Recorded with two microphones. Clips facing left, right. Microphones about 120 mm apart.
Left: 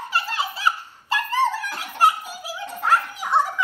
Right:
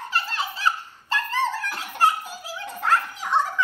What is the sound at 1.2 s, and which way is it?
Dog, 15° left (ahead or behind).